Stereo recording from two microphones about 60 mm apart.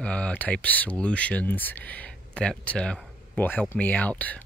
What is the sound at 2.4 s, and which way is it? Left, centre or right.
Speech, centre.